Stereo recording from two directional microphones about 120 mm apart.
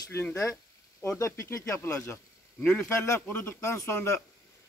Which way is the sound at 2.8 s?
20° left (ahead or behind).